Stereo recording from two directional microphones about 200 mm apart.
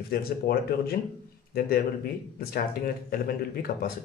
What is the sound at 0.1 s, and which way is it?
Speech, 50° left (ahead or behind).